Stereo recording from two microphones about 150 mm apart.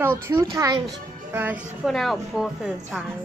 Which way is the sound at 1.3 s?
10° right (ahead or behind).